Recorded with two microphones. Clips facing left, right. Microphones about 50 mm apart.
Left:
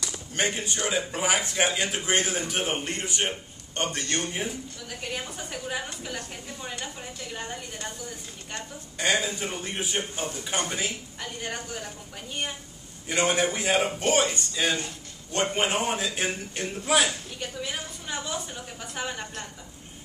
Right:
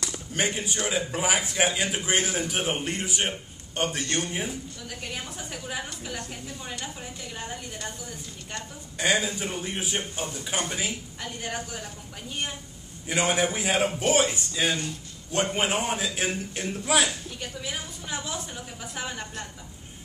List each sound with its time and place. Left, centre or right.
0.1 s speech: centre
8.9 s speech: centre
13.1 s speech: centre